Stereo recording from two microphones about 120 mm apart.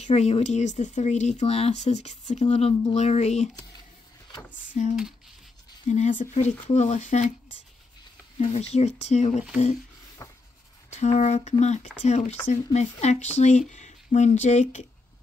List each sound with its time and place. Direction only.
0.0 s speech: 60° left (ahead or behind)
4.7 s speech: 75° left (ahead or behind)
8.4 s speech: 60° left (ahead or behind)
10.2 s a sound: 25° left (ahead or behind)
10.9 s speech: 70° left (ahead or behind)